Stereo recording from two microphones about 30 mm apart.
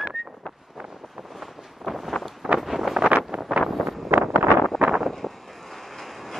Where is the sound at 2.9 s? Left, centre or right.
Right.